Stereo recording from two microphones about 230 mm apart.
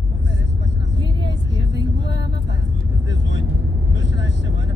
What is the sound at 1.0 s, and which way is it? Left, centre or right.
Vehicle, left.